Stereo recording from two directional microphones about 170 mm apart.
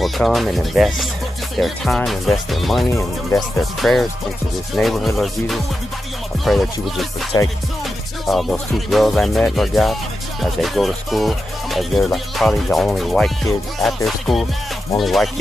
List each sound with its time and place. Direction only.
0.0 s music: centre (ahead or behind)
2.9 s speech: 15° left (ahead or behind)
3.3 s music: centre (ahead or behind)
7.3 s music: 25° left (ahead or behind)
8.3 s music: centre (ahead or behind)